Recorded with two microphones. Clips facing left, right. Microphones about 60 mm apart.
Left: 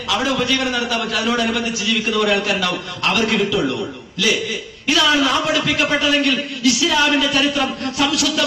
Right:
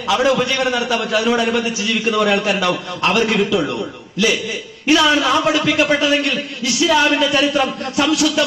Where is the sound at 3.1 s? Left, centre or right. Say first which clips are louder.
Right 2 dB; centre.